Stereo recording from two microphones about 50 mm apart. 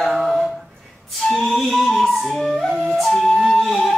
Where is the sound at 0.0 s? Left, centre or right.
Centre.